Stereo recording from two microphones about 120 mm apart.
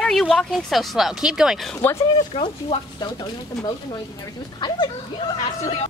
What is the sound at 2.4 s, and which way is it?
Speech, 40° left (ahead or behind).